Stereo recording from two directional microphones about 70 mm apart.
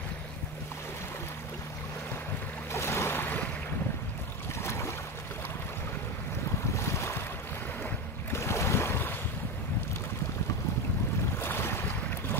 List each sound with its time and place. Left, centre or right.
2.7 s boat: left
4.6 s boat: left
6.7 s boat: left
8.3 s boat: left
11.4 s boat: left